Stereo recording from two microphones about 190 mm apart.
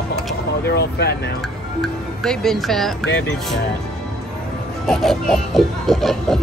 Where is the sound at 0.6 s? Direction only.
60° left (ahead or behind).